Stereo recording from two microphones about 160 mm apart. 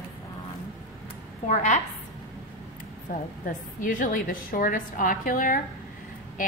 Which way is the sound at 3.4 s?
55° left (ahead or behind).